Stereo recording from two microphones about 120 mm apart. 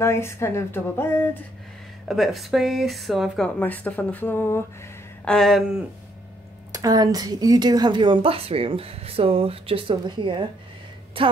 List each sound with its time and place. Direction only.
0.0 s speech: 20° left (ahead or behind)
2.0 s speech: centre (ahead or behind); by 4.9 s 20° left (ahead or behind)
5.2 s speech: 5° left (ahead or behind)
6.7 s a woman's voice: 30° right (ahead or behind)